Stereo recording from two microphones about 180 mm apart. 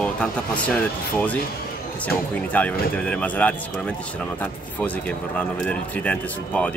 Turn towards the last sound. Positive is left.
turn(degrees=5)  # may be behind; listen again after turning